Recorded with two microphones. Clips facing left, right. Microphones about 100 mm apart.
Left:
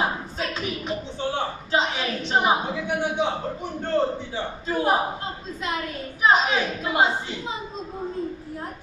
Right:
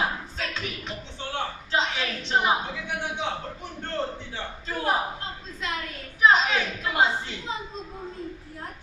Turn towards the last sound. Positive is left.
turn(degrees=10)  # may be behind; listen again after turning